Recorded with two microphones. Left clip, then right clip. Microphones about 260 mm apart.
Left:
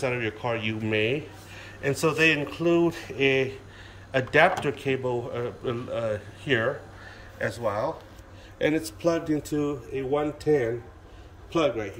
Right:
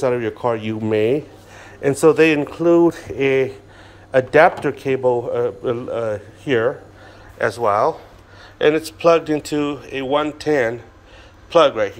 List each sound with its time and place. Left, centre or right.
0.0 s a man's voice: right
8.5 s speech: centre